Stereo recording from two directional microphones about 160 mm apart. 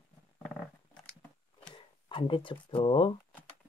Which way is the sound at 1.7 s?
30° left (ahead or behind).